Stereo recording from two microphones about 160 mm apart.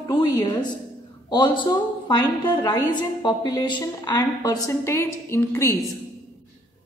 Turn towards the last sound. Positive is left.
turn(degrees=15)  # may be behind; listen again after turning